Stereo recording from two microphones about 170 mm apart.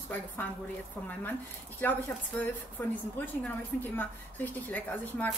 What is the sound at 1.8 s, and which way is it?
A woman's voice, 10° left (ahead or behind).